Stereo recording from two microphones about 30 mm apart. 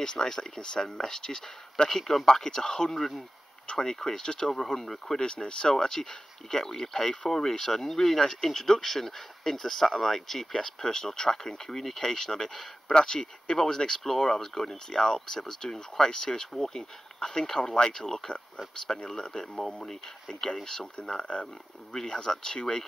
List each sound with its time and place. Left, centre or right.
0.0 s speech: left
0.8 s speech: centre
1.9 s speech: centre
2.9 s speech: centre
3.6 s speech: left
3.9 s speech: centre
4.2 s speech: left
4.6 s speech: centre
5.2 s speech: left
19.7 s speech: centre
20.2 s speech: centre
21.2 s speech: left
21.9 s speech: left